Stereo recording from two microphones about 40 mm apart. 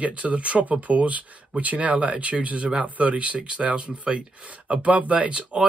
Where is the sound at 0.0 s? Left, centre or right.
Right.